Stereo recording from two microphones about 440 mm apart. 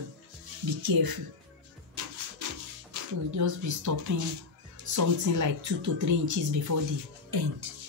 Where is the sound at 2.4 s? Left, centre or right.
Right.